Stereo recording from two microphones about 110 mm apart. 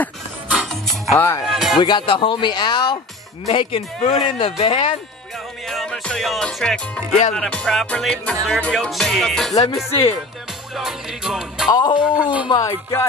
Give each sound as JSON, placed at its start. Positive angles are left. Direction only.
{"t": 0.5, "sound": "music", "side_deg": 0}
{"t": 1.1, "sound": "speech", "side_deg": 20}
{"t": 1.5, "sound": "music", "side_deg": -5}
{"t": 1.8, "sound": "speech", "side_deg": 45}
{"t": 3.5, "sound": "speech", "side_deg": 55}
{"t": 5.7, "sound": "music", "side_deg": 5}
{"t": 10.8, "sound": "music", "side_deg": -5}
{"t": 11.7, "sound": "speech", "side_deg": 40}
{"t": 12.2, "sound": "speech", "side_deg": -10}
{"t": 12.4, "sound": "speech", "side_deg": 35}